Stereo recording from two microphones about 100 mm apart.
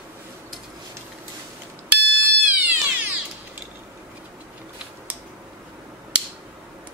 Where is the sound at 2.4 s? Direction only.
15° right (ahead or behind).